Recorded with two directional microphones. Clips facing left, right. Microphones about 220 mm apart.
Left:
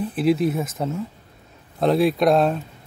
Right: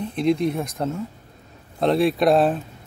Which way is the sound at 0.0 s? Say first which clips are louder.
Left 1 dB; 5° left (ahead or behind).